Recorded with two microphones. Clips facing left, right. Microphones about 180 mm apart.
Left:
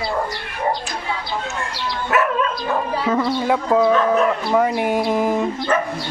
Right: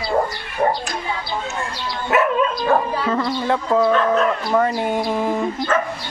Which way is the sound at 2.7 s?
60° right (ahead or behind).